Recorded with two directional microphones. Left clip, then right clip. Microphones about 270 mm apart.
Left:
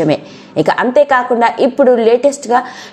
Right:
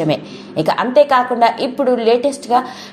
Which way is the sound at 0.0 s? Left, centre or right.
Left.